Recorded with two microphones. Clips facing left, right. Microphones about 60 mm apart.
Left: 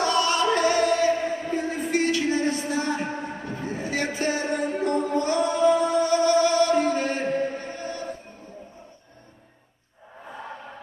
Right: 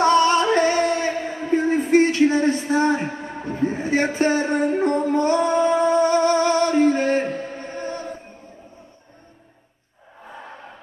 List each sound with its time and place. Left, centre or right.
0.0 s music: right
5.1 s music: right